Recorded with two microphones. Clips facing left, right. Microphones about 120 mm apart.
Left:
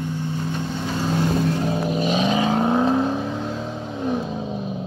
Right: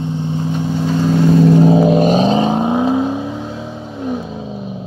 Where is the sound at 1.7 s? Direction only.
90° right.